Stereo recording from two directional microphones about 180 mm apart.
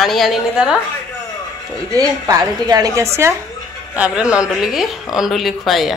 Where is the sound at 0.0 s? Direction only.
Centre (ahead or behind).